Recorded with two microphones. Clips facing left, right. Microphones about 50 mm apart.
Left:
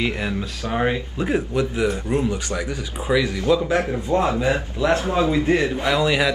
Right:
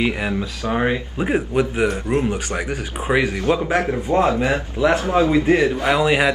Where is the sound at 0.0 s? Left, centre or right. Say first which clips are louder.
Right 3 dB; centre.